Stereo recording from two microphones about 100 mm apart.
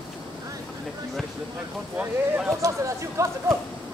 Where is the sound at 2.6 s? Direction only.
30° right (ahead or behind).